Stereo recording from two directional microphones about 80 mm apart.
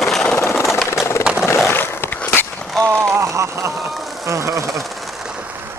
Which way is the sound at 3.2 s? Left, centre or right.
Right.